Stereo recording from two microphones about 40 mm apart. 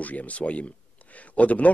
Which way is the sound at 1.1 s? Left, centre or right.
Left.